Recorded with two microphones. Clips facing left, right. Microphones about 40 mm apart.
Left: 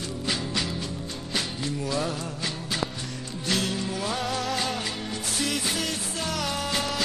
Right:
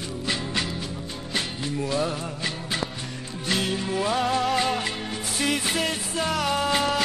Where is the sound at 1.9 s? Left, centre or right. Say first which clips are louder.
Right 3 dB; centre.